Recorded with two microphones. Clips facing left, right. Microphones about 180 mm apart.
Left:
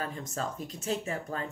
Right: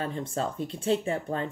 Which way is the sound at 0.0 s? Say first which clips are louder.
Right 5 dB; 30° right (ahead or behind).